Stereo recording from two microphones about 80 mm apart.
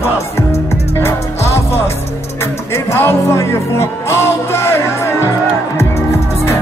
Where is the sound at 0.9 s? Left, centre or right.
Left.